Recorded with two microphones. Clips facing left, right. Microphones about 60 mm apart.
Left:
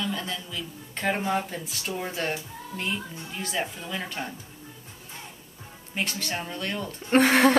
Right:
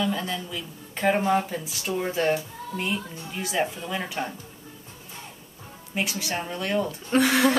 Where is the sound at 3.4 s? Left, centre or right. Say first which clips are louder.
Right 4 dB; centre.